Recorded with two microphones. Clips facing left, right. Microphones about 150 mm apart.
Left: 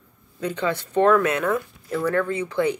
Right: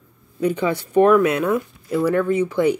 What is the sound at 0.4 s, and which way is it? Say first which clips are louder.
Speech: right 5 dB; 10° right (ahead or behind).